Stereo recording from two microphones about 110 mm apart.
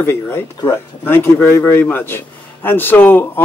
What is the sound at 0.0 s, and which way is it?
Speech, 20° left (ahead or behind).